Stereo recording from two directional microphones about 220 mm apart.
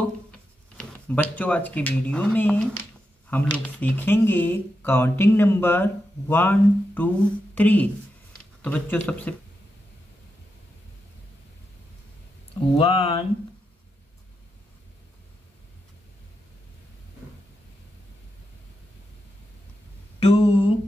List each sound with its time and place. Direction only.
0.7 s speech: 5° left (ahead or behind)
12.7 s speech: 25° left (ahead or behind)
20.2 s a sound: 25° left (ahead or behind)